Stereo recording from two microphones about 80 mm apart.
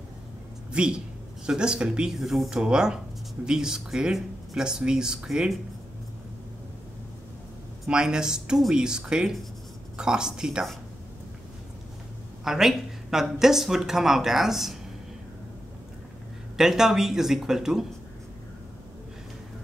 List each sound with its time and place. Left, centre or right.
0.7 s speech: centre
7.8 s speech: centre
12.4 s speech: centre
16.5 s speech: centre